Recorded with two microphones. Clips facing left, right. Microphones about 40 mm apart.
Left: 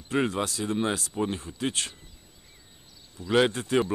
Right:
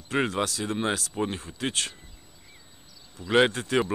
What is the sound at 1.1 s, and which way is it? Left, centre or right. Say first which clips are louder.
Speech: even; centre.